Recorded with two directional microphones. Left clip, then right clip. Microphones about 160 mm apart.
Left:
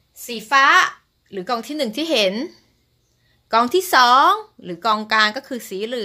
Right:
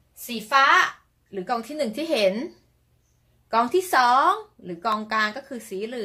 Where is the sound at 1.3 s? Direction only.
45° left (ahead or behind).